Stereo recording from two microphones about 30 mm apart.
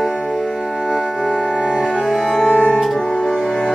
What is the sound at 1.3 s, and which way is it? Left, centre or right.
Music, left.